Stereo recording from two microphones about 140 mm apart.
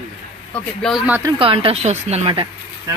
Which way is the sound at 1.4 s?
40° right (ahead or behind).